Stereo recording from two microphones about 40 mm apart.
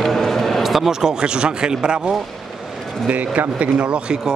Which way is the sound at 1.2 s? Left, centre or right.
Right.